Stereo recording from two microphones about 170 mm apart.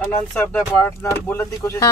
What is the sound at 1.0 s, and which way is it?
Speech, 15° left (ahead or behind).